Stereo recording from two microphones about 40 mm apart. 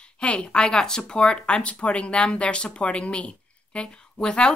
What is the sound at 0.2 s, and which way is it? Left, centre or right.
Speech, left.